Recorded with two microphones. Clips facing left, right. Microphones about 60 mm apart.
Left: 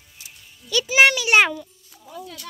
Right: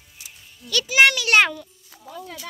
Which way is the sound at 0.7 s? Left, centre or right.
Centre.